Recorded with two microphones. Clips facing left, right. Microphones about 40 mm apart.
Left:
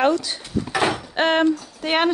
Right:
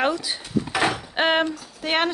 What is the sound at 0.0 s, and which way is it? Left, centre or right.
Drawer open or close, centre.